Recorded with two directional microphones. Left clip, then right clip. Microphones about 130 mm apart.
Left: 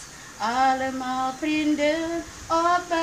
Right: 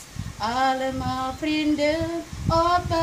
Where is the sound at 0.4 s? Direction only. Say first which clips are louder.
Left 1 dB; 5° right (ahead or behind).